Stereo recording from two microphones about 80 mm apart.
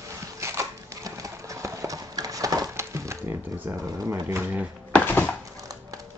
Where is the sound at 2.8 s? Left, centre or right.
Right.